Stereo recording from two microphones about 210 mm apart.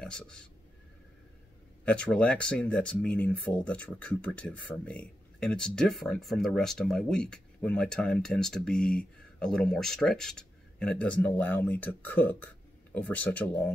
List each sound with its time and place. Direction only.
0.0 s speech: 5° left (ahead or behind)
1.9 s speech: 5° left (ahead or behind)